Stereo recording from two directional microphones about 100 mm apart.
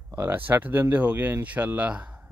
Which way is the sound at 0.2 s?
20° right (ahead or behind).